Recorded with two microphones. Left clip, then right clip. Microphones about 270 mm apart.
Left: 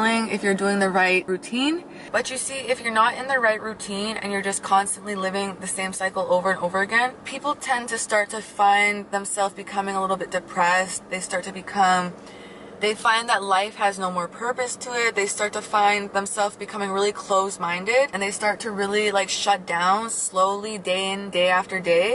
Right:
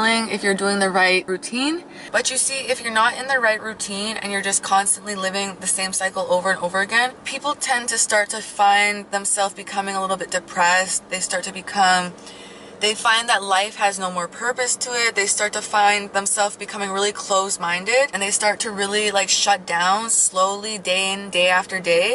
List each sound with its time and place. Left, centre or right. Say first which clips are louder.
0.0 s a woman's voice: right 3 dB; centre
6.1 s speech: right 1 dB; left
6.8 s a woman's voice: right 2 dB; centre